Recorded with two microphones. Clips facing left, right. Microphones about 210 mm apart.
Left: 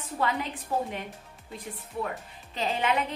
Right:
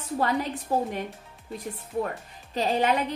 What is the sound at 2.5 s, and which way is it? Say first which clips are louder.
Speech: right 5 dB; 40° right (ahead or behind).